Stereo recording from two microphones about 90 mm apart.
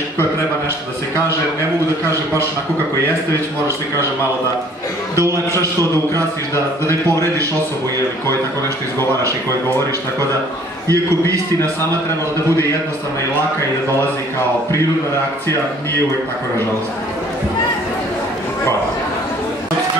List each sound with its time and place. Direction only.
5.1 s a man's voice: 30° right (ahead or behind)
10.9 s a man's voice: 40° right (ahead or behind)